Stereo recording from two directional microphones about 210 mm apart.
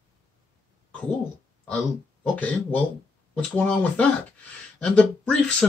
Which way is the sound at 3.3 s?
5° left (ahead or behind).